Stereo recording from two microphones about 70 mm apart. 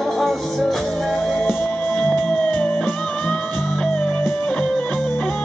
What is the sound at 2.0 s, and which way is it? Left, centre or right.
Music, centre.